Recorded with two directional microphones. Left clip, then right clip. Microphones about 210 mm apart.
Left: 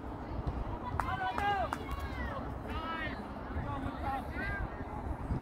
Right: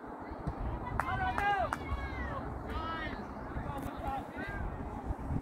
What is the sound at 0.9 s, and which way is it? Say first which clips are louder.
Run: right 1 dB; 25° right (ahead or behind).